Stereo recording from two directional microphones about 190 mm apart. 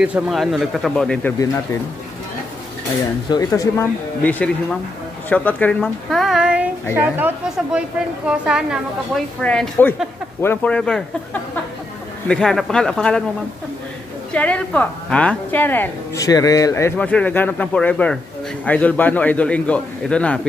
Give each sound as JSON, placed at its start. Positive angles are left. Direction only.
{"t": 0.0, "sound": "speech", "side_deg": -5}
{"t": 3.3, "sound": "a woman's voice", "side_deg": 20}
{"t": 12.3, "sound": "speech", "side_deg": 5}
{"t": 14.3, "sound": "a woman's voice", "side_deg": 5}